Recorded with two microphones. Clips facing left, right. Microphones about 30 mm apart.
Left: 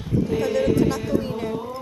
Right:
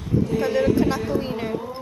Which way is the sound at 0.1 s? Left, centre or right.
Centre.